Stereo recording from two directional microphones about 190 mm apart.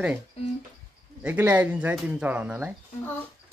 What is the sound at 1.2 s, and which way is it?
Speech, 10° right (ahead or behind).